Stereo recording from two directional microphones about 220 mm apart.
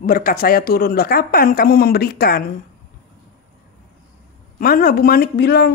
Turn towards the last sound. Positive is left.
turn(degrees=45)  # may be behind; listen again after turning